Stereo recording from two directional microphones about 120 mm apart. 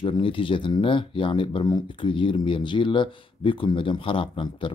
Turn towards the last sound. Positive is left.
turn(degrees=45)  # may be behind; listen again after turning